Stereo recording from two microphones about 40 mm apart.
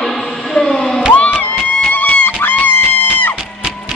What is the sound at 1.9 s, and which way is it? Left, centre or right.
Music, left.